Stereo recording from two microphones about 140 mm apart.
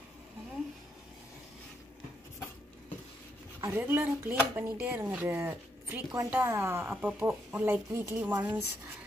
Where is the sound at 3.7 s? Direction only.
15° right (ahead or behind).